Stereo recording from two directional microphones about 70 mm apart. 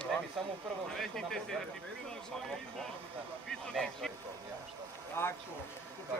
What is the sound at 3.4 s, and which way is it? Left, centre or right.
Speech, centre.